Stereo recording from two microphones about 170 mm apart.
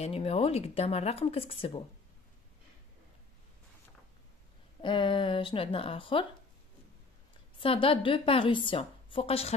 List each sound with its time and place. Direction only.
0.0 s a woman's voice: 35° left (ahead or behind)
4.8 s a woman's voice: 30° left (ahead or behind)
7.6 s a woman's voice: 30° left (ahead or behind)